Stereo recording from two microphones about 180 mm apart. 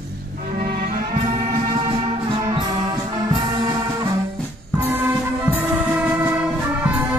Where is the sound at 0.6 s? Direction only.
55° right (ahead or behind).